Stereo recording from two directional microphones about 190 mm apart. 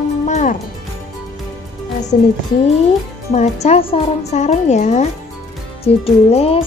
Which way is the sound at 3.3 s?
35° left (ahead or behind).